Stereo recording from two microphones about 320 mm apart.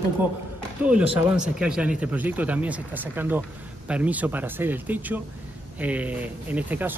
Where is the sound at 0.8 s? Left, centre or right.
Centre.